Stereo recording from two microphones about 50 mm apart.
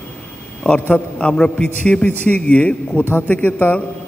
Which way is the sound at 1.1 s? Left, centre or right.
Left.